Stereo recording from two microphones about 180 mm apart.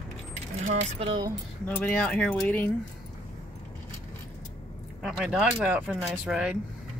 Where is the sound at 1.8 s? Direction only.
5° left (ahead or behind).